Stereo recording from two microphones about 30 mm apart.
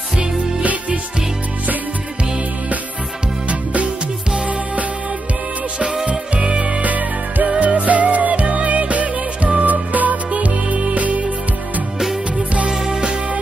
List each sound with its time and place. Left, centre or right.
0.6 s music: right
3.4 s music: right
6.0 s music: right
6.9 s music: right
7.4 s music: right
7.7 s music: right
12.6 s music: right